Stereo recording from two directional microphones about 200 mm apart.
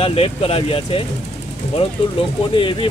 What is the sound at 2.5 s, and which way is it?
Speech, 25° left (ahead or behind).